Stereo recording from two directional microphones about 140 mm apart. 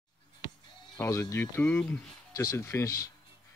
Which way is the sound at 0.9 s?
20° left (ahead or behind).